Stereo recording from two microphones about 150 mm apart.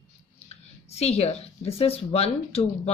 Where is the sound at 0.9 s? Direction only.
45° left (ahead or behind).